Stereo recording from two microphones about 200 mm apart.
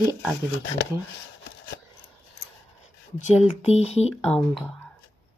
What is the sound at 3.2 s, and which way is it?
Speech, 35° left (ahead or behind).